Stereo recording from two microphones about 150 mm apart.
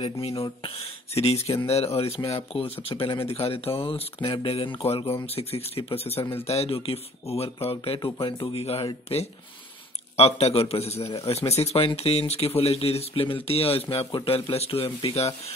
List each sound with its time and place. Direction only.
0.0 s a man's voice: 40° left (ahead or behind)
10.1 s a man's voice: 45° left (ahead or behind)